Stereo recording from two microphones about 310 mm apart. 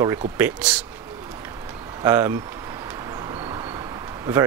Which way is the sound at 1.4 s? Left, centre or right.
Centre.